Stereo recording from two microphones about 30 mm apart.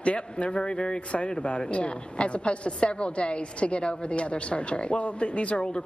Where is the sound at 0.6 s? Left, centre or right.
Left.